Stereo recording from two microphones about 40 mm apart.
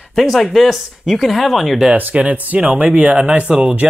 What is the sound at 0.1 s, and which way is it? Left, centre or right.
Speech, centre.